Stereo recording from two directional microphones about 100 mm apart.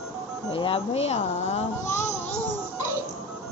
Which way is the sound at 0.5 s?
65° left (ahead or behind).